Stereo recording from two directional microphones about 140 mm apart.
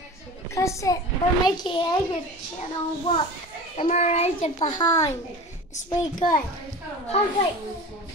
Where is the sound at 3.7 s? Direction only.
50° left (ahead or behind).